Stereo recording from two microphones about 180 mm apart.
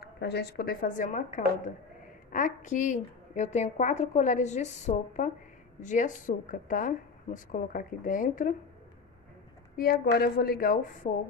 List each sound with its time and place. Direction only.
0.0 s a woman's voice: 65° left (ahead or behind); by 8.5 s 50° left (ahead or behind)
9.8 s a woman's voice: 60° left (ahead or behind)